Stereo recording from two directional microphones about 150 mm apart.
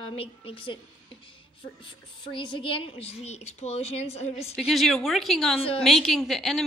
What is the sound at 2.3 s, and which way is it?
A woman's voice, 35° left (ahead or behind).